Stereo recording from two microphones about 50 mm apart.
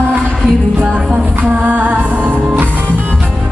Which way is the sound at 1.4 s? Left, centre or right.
Right.